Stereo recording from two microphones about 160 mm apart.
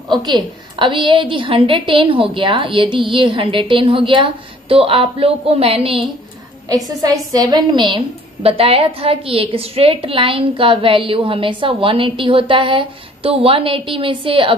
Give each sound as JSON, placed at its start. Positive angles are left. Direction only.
{"t": 0.2, "sound": "a woman's voice", "side_deg": -30}
{"t": 6.7, "sound": "a woman's voice", "side_deg": -25}